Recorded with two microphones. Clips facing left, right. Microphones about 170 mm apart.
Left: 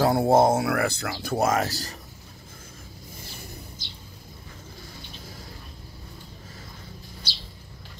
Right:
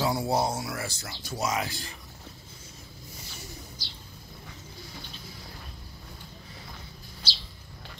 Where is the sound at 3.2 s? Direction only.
55° left (ahead or behind).